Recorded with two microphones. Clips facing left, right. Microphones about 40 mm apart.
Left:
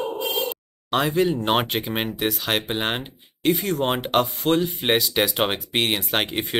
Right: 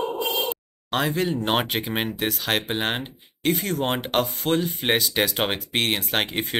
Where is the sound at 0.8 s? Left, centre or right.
Centre.